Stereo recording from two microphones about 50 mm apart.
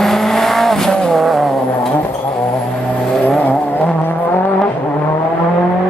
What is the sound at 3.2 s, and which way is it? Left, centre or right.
Vehicle, left.